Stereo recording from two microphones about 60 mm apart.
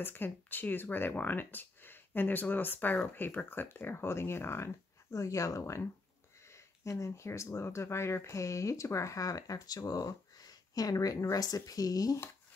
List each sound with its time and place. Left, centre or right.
0.0 s speech: left
5.1 s speech: left